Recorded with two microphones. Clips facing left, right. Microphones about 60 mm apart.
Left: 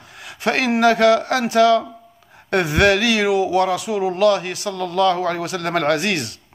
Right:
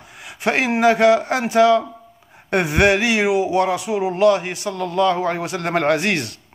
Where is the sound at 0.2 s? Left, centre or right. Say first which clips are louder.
Even; right.